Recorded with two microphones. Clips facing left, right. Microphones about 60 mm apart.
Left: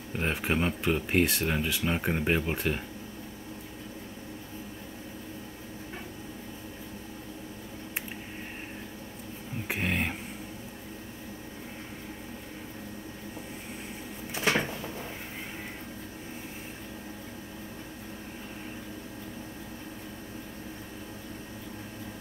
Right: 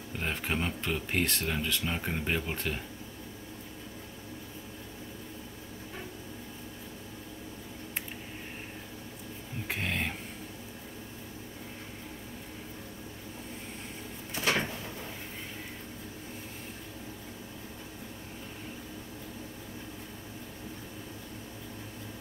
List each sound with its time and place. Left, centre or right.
0.1 s speech: centre
9.7 s a sound: centre
14.3 s cupboard open or close: centre